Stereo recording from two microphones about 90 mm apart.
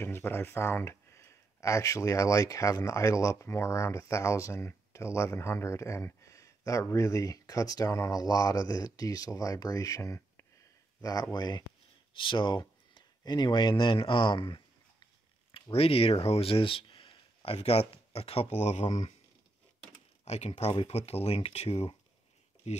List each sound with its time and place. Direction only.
0.0 s speech: 25° left (ahead or behind); by 11.6 s 50° left (ahead or behind)
12.1 s speech: 65° left (ahead or behind)
15.7 s speech: 90° left
20.7 s speech: 90° left